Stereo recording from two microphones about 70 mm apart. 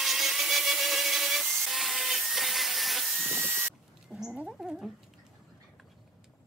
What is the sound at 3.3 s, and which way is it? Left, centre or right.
Ratchet, right.